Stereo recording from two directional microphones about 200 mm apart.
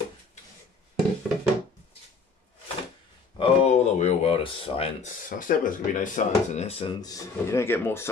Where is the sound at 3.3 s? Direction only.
30° left (ahead or behind).